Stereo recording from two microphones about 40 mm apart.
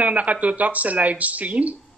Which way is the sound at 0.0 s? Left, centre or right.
Right.